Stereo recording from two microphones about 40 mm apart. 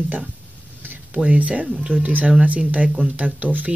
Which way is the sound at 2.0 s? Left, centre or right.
Right.